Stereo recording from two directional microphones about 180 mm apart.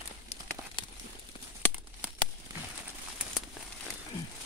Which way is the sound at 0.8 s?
25° left (ahead or behind).